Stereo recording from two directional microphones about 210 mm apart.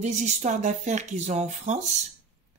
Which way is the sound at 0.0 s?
35° right (ahead or behind).